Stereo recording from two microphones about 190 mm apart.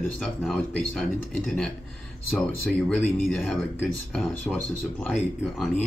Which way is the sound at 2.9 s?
5° left (ahead or behind).